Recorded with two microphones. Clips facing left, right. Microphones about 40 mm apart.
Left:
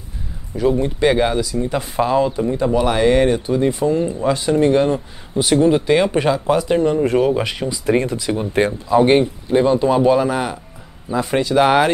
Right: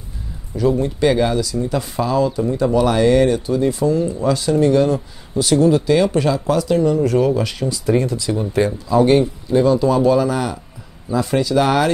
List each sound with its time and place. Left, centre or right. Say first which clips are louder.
0.6 s speech: even; centre